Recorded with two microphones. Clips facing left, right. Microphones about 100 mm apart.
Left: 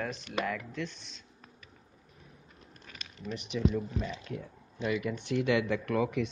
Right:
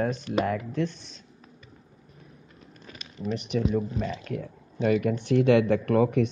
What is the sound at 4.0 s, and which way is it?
Speech, 65° right (ahead or behind).